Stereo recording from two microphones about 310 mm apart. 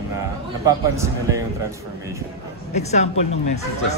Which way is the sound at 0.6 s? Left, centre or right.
Centre.